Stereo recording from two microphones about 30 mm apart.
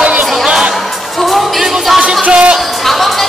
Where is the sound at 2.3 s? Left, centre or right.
Right.